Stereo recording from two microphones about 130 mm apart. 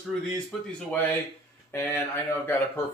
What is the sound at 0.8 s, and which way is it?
Speech, 15° left (ahead or behind).